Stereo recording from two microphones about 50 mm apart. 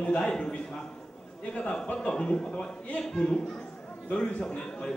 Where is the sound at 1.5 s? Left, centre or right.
Centre.